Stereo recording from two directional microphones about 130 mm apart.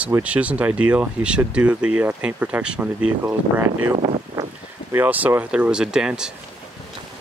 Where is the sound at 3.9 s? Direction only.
50° right (ahead or behind).